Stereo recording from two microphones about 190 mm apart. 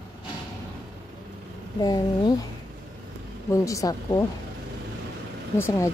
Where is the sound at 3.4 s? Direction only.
15° left (ahead or behind).